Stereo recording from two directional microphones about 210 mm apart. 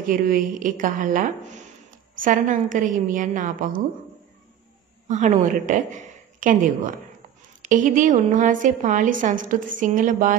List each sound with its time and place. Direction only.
0.0 s a woman's voice: 40° right (ahead or behind)
5.0 s a woman's voice: 35° right (ahead or behind)